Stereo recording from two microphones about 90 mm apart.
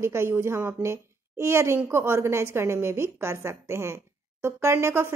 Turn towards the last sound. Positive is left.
turn(degrees=-30)  # may be behind; listen again after turning